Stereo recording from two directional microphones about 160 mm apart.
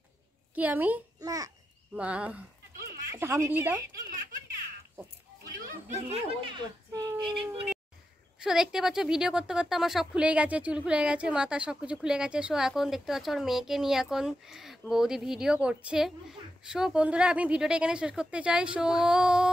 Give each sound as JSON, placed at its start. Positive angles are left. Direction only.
{"t": 0.6, "sound": "speech", "side_deg": -10}
{"t": 1.2, "sound": "a child's voice", "side_deg": -20}
{"t": 2.0, "sound": "speech", "side_deg": -10}
{"t": 5.9, "sound": "speech", "side_deg": -40}
{"t": 6.5, "sound": "speech", "side_deg": -25}
{"t": 8.4, "sound": "a woman's voice", "side_deg": -5}